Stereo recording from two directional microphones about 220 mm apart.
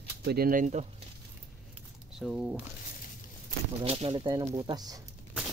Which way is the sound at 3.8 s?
25° right (ahead or behind).